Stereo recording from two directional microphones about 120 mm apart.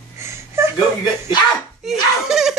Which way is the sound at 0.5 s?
20° right (ahead or behind).